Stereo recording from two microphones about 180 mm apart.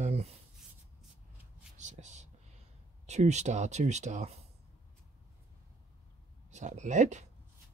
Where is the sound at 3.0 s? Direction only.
40° right (ahead or behind).